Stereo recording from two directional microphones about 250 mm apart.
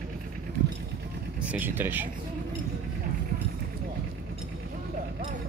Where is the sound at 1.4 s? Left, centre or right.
Centre.